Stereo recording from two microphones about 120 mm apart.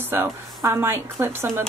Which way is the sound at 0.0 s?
20° right (ahead or behind).